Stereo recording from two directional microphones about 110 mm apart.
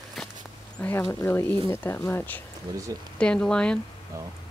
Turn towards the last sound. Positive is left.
turn(degrees=10)  # may be behind; listen again after turning